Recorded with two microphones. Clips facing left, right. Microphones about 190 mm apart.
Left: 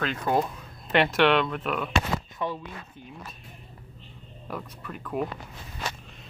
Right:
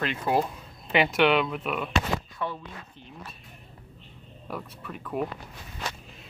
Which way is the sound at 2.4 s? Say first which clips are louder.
Left 5 dB; 15° left (ahead or behind).